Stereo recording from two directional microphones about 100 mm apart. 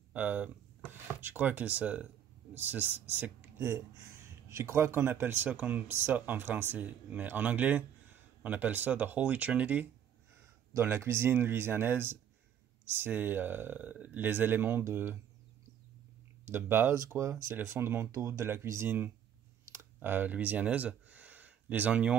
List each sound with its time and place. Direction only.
0.1 s speech: 15° right (ahead or behind)
10.7 s speech: 25° right (ahead or behind)
16.5 s speech: 20° right (ahead or behind)
19.6 s a sound: 30° right (ahead or behind)